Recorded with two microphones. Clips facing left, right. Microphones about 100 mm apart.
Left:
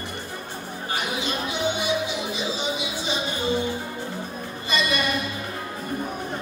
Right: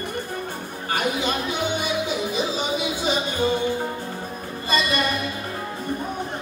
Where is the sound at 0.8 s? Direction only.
55° right (ahead or behind).